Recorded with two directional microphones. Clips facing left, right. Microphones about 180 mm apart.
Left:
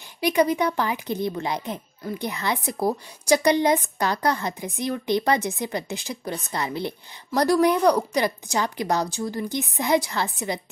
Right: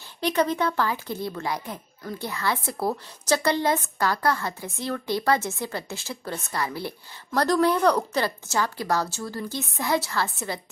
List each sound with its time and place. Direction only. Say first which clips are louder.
0.2 s speech: left 3 dB; 10° left (ahead or behind)
7.2 s speech: left 2 dB; 10° left (ahead or behind)